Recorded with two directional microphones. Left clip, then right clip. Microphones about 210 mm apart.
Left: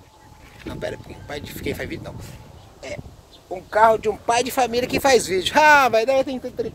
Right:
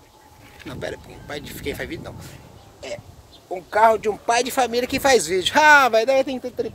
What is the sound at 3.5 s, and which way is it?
Speech, 5° right (ahead or behind).